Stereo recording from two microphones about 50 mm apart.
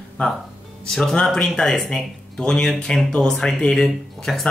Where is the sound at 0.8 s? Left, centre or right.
Centre.